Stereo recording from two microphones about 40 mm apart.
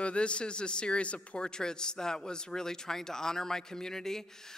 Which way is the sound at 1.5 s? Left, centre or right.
Centre.